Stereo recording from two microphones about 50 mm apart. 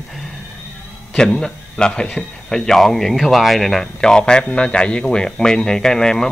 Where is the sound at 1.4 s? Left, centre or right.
Centre.